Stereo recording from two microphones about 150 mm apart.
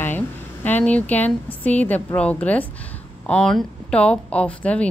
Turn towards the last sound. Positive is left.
turn(degrees=10)  # may be behind; listen again after turning